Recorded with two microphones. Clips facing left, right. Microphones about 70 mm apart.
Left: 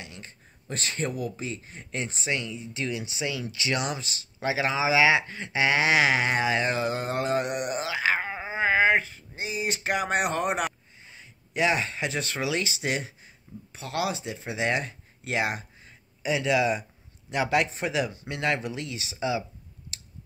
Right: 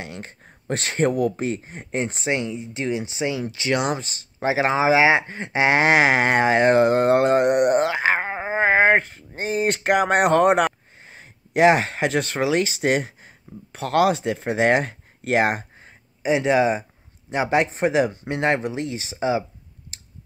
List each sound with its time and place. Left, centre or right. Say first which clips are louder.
0.0 s speech: right 8 dB; right
1.6 s speech: right 8 dB; right
2.6 s speech: right 6 dB; right
11.0 s speech: right 4 dB; right
13.7 s speech: right 11 dB; right
16.2 s a man's voice: right 6 dB; right
17.6 s speech: right 8 dB; right